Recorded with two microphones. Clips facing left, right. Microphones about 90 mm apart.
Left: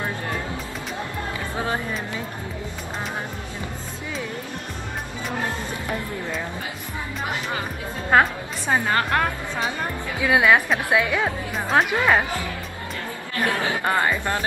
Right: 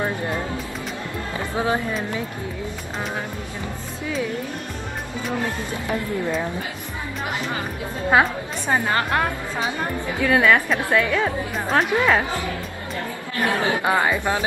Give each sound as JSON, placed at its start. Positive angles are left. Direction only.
{"t": 1.5, "sound": "speech", "side_deg": -15}
{"t": 8.1, "sound": "a woman's voice", "side_deg": -5}
{"t": 10.2, "sound": "a woman's voice", "side_deg": 10}
{"t": 13.5, "sound": "speech", "side_deg": -20}